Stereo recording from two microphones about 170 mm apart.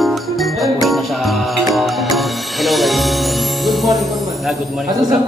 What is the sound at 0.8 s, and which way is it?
Speech, centre (ahead or behind).